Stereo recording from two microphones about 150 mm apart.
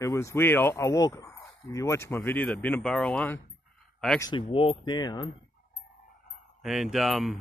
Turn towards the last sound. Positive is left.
turn(degrees=0)  # may be behind; listen again after turning